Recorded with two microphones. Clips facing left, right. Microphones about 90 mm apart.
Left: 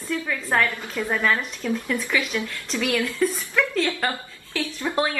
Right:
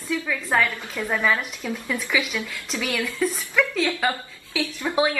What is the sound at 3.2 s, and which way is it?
Speech, 5° right (ahead or behind).